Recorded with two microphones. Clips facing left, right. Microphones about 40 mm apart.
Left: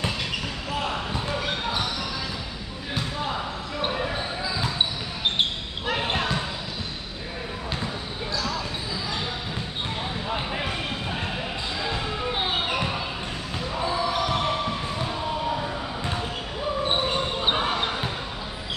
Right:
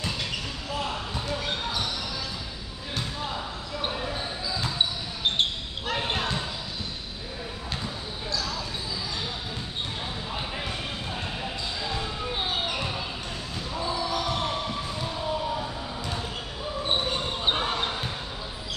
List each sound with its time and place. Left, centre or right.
0.8 s basketball bounce: left
5.9 s basketball bounce: centre
10.2 s a sound: left
11.8 s basketball bounce: left
17.5 s basketball bounce: centre